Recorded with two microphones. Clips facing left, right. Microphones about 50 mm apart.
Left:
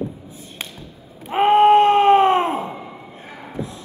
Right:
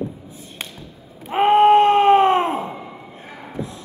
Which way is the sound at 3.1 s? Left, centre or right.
Left.